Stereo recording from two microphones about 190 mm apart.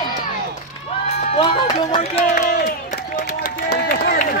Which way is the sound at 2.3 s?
45° left (ahead or behind).